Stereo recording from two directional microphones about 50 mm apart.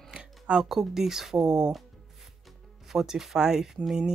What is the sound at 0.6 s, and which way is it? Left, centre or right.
Speech, centre.